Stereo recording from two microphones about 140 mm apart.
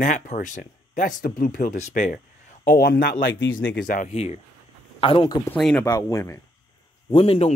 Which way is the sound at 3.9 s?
70° left (ahead or behind).